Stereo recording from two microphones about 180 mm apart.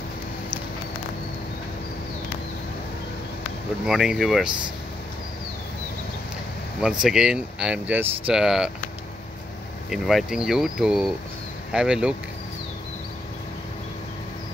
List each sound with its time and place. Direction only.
3.8 s speech: 5° right (ahead or behind)
6.8 s speech: 5° right (ahead or behind)
9.8 s speech: centre (ahead or behind)